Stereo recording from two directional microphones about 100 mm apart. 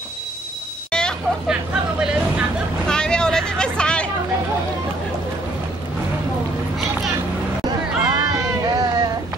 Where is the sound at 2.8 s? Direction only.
10° left (ahead or behind).